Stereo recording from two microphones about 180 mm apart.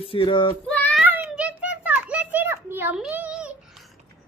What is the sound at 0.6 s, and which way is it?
Child singing, 5° left (ahead or behind).